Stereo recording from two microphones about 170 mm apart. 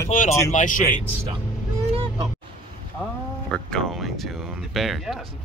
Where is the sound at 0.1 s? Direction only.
50° left (ahead or behind).